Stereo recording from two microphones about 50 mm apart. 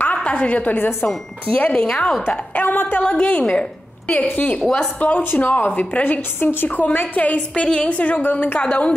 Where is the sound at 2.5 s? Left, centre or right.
Left.